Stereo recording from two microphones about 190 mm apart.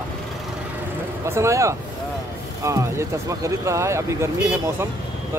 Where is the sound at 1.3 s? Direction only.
15° right (ahead or behind).